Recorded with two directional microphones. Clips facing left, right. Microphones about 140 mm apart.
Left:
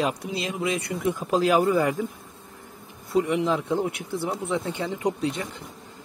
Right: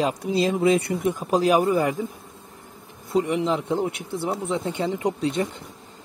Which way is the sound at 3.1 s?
20° right (ahead or behind).